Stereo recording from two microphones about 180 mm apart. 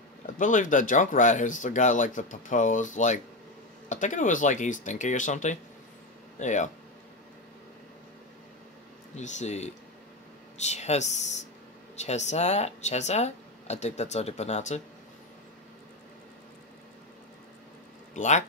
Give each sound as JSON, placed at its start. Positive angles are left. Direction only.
{"t": 0.4, "sound": "speech", "side_deg": 45}
{"t": 9.1, "sound": "speech", "side_deg": 40}
{"t": 18.1, "sound": "speech", "side_deg": 40}